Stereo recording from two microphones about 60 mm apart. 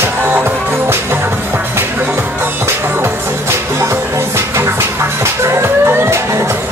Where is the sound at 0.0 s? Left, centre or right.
Right.